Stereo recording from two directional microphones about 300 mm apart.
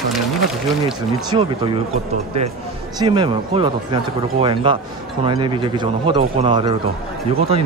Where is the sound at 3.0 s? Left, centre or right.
Centre.